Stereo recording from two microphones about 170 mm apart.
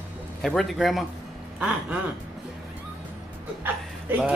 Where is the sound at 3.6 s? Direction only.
10° right (ahead or behind).